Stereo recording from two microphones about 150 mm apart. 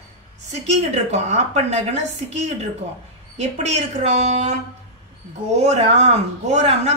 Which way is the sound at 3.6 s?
50° right (ahead or behind).